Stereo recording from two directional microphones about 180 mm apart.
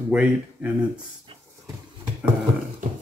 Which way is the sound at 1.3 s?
30° right (ahead or behind).